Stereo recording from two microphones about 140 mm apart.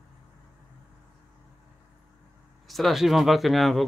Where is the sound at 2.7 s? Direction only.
Centre (ahead or behind).